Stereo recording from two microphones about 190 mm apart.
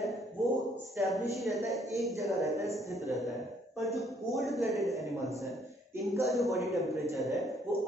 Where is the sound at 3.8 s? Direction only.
Centre (ahead or behind).